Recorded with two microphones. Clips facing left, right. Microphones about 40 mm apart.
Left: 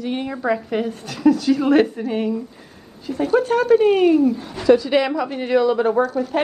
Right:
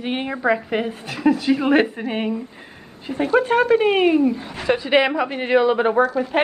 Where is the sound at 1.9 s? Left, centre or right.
Right.